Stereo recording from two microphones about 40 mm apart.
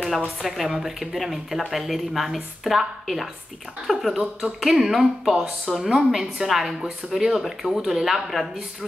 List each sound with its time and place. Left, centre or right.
0.4 s a woman's voice: centre
5.9 s speech: centre
6.4 s a woman's voice: centre